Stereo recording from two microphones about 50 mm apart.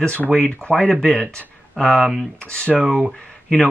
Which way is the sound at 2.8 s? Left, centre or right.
Centre.